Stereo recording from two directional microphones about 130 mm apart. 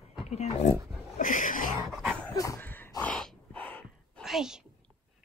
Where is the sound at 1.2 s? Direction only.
90° left.